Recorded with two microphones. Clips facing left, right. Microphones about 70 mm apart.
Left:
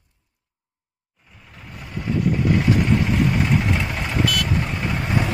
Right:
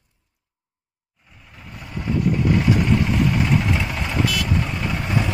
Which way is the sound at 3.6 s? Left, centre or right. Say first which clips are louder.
Even; centre.